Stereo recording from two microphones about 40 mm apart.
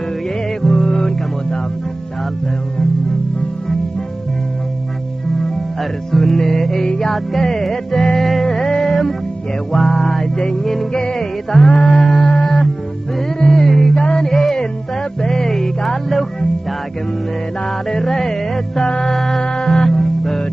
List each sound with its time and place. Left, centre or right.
0.6 s music: centre
5.8 s music: centre
17.9 s music: centre